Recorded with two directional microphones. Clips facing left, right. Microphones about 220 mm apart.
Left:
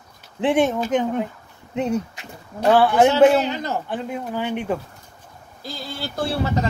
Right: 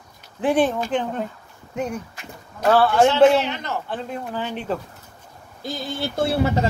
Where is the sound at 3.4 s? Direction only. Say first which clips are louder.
Left 3 dB; 35° left (ahead or behind).